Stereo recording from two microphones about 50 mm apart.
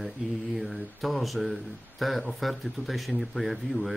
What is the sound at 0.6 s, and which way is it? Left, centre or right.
Speech, centre.